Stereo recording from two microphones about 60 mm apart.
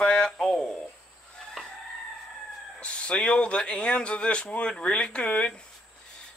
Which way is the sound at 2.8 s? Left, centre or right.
Centre.